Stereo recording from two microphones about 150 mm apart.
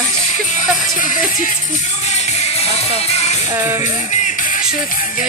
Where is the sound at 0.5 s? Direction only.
60° left (ahead or behind).